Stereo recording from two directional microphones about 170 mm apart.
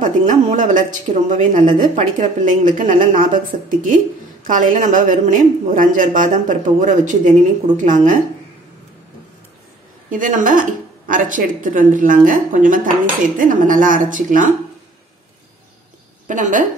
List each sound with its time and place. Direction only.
0.0 s a woman's voice: 50° right (ahead or behind)
10.1 s a woman's voice: 50° right (ahead or behind)
16.3 s a woman's voice: 50° right (ahead or behind)